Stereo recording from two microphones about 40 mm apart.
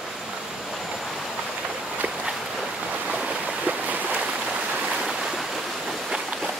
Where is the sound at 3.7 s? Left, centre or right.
Right.